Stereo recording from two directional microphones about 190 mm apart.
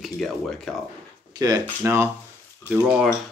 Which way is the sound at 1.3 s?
20° right (ahead or behind).